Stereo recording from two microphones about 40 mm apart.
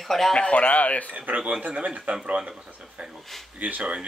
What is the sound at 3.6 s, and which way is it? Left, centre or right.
Speech, right.